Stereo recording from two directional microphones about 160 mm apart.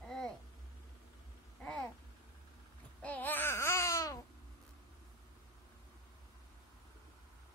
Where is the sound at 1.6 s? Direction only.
5° left (ahead or behind).